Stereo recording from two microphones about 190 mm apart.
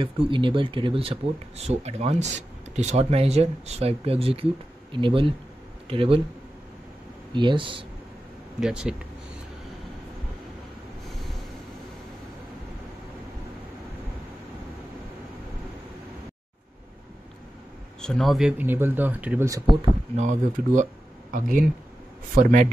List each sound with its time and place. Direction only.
0.0 s speech: 25° right (ahead or behind)
7.3 s speech: 25° right (ahead or behind)
8.5 s speech: 5° right (ahead or behind)
18.0 s speech: centre (ahead or behind); by 19.8 s 15° right (ahead or behind)
20.2 s a man's voice: 40° right (ahead or behind)